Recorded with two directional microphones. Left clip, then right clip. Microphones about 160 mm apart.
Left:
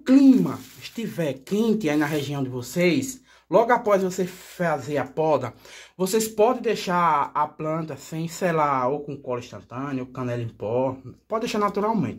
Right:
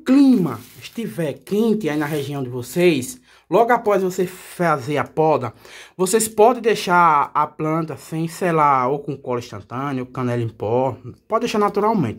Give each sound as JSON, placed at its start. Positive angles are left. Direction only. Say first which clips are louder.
{"t": 0.0, "sound": "speech", "louder": "right 2 dB", "side_deg": -15}
{"t": 5.9, "sound": "speech", "louder": "right 5 dB", "side_deg": -30}